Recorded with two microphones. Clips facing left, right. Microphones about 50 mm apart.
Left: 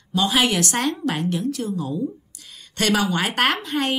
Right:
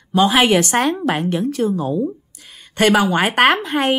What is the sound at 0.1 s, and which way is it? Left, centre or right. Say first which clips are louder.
A woman's voice: right 6 dB; right.